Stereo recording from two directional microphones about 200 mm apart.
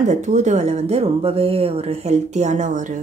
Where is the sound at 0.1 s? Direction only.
35° right (ahead or behind).